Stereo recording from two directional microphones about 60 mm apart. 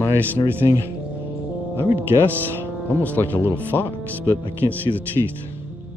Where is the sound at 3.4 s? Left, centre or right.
Right.